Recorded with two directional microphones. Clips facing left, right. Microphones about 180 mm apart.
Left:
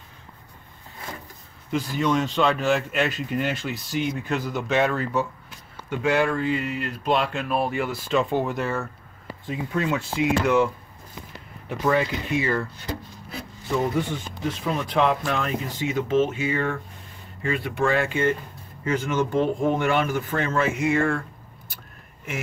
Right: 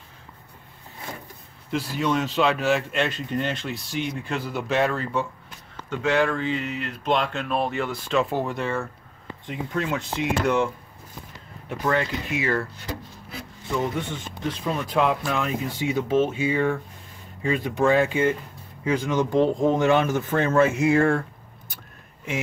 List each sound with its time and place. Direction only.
1.7 s speech: centre (ahead or behind)
11.7 s speech: centre (ahead or behind)
13.7 s speech: 5° left (ahead or behind); by 21.2 s 35° right (ahead or behind)